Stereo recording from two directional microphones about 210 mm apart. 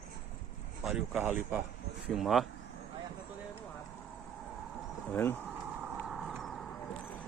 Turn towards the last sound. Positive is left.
turn(degrees=0)  # may be behind; listen again after turning